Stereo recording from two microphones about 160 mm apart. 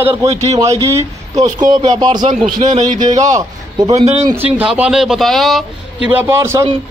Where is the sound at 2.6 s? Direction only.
50° right (ahead or behind).